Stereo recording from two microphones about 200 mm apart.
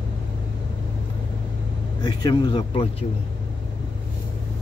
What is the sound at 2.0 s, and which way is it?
Speech, 20° left (ahead or behind).